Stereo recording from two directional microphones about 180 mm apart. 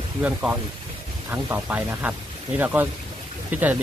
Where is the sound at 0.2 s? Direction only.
5° right (ahead or behind).